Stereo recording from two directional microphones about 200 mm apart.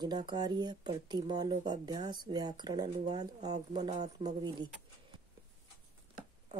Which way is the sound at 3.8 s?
35° right (ahead or behind).